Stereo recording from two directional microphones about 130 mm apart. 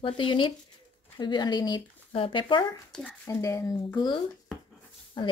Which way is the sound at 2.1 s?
45° left (ahead or behind).